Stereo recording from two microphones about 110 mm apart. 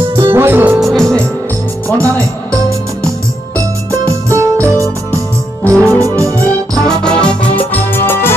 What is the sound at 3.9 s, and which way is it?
Keyboard, 30° right (ahead or behind).